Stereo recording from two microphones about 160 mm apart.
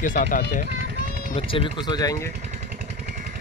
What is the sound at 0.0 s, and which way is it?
Speech, 55° left (ahead or behind).